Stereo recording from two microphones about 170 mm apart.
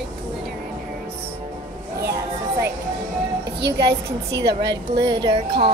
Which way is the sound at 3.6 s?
80° right.